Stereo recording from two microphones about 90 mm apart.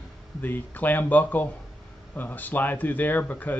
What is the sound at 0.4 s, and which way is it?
Speech, 20° left (ahead or behind).